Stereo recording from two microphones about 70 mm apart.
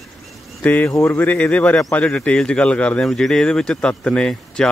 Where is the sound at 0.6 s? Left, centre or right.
Left.